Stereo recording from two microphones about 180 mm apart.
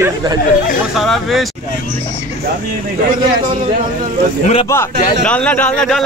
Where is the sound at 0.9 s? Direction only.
Centre (ahead or behind).